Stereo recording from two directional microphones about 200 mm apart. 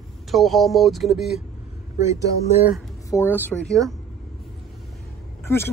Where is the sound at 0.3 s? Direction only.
Centre (ahead or behind).